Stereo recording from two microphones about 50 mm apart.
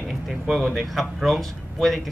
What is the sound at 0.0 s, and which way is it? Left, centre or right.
Speech, centre.